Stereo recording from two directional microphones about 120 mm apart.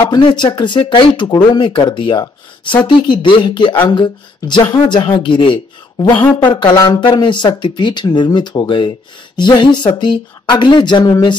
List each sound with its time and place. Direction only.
0.1 s speech: 40° left (ahead or behind)